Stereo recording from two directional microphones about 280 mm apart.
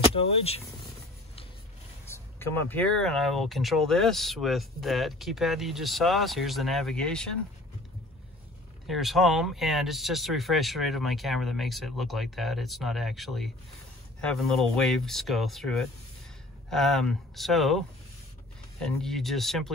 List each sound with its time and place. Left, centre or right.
0.1 s speech: left
2.0 s speech: centre
8.8 s speech: centre